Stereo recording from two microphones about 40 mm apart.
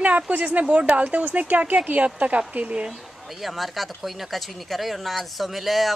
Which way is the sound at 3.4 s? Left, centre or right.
Centre.